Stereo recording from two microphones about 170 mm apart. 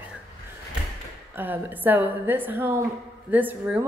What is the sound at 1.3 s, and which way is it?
A woman's voice, 10° right (ahead or behind).